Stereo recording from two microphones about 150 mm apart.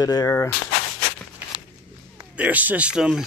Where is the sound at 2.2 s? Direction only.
10° right (ahead or behind).